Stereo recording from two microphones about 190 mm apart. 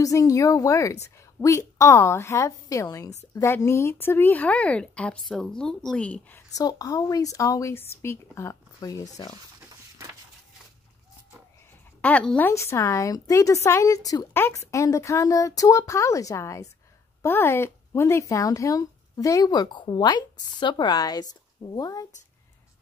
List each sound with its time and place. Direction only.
0.0 s speech: 15° left (ahead or behind)
12.0 s speech: 5° left (ahead or behind)